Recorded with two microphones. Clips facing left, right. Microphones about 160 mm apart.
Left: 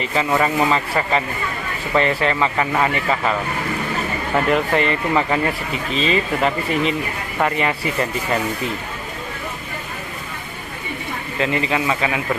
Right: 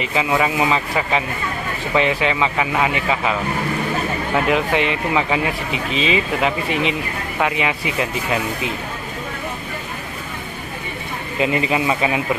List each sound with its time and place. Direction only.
0.1 s speech: 5° right (ahead or behind)
4.5 s speech: centre (ahead or behind)
11.3 s speech: 15° right (ahead or behind)